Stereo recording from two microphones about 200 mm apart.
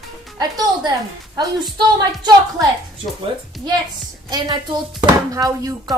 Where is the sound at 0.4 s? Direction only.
20° right (ahead or behind).